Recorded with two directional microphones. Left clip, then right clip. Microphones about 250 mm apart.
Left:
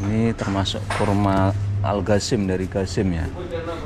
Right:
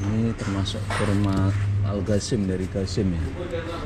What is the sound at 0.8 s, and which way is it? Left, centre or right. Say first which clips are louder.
Speech: left 3 dB; centre.